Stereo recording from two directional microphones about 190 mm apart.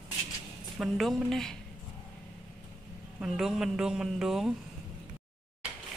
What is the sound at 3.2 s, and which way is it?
A woman's voice, centre (ahead or behind).